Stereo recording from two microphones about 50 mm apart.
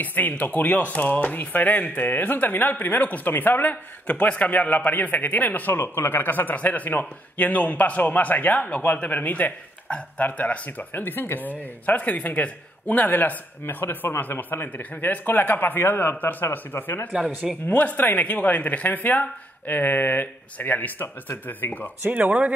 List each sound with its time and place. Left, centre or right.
0.0 s speech: left
5.8 s speech: left
13.8 s speech: left
14.3 s speech: left
17.6 s speech: left
22.1 s speech: right